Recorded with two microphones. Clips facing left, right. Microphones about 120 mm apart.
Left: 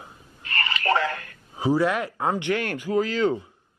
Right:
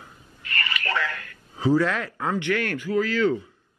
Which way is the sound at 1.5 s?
15° left (ahead or behind).